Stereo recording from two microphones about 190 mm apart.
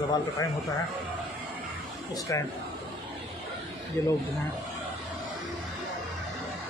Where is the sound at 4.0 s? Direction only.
10° left (ahead or behind).